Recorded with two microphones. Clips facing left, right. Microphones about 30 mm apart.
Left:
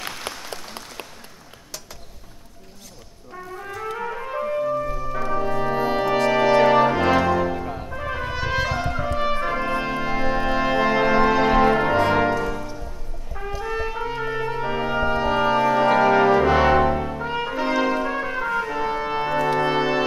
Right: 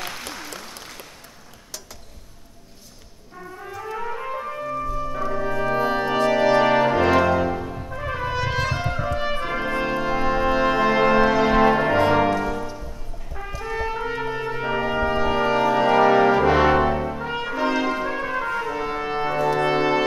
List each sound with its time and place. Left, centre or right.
0.3 s applause: left
4.3 s music: centre
6.3 s brass instrument: centre
7.6 s brass instrument: left
7.9 s brass instrument: centre
12.4 s music: centre
13.5 s brass instrument: centre